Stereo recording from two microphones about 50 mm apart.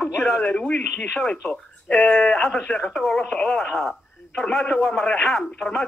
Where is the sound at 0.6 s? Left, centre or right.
Left.